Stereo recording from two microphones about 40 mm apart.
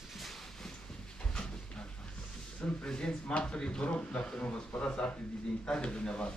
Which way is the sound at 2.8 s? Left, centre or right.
Left.